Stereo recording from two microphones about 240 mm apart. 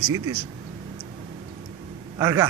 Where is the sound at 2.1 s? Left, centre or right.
Centre.